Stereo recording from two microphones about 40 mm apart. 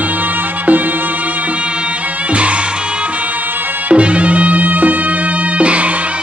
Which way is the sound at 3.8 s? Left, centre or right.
Right.